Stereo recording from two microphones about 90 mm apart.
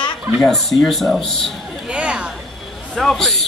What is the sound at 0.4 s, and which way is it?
A man's voice, centre (ahead or behind).